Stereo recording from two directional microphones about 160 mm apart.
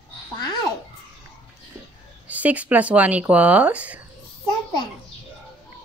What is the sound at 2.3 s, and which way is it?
Speech, 10° right (ahead or behind).